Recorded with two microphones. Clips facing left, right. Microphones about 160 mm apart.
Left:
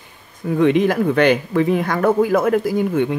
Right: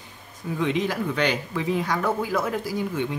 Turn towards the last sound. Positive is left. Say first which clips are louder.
# left 9 dB
turn(degrees=55)  # may be behind; listen again after turning